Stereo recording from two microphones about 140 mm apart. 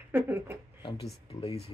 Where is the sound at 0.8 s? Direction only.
35° left (ahead or behind).